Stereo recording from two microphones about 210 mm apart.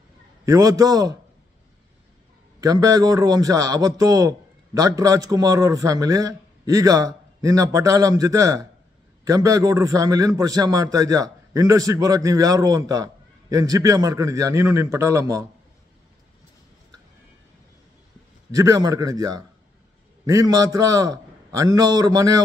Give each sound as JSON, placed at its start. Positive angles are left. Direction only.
{"t": 0.5, "sound": "a man's voice", "side_deg": -15}
{"t": 2.6, "sound": "a man's voice", "side_deg": -15}
{"t": 18.5, "sound": "a man's voice", "side_deg": -15}